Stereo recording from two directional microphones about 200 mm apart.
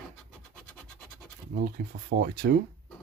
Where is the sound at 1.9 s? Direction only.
50° right (ahead or behind).